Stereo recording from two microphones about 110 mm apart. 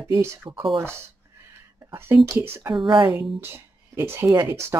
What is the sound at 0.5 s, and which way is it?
Speech, 55° right (ahead or behind).